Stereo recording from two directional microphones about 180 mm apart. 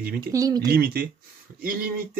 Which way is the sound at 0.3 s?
20° right (ahead or behind).